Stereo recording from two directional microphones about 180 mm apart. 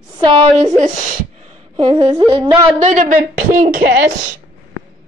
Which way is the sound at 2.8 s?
45° right (ahead or behind).